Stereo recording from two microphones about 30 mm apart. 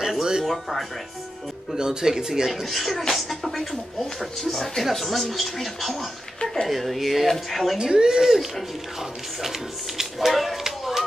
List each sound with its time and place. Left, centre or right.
0.2 s music: centre
0.5 s a woman's voice: centre
1.8 s speech: right
2.5 s a woman's voice: centre
7.7 s speech: right
10.1 s a sound: centre
10.6 s a sound: centre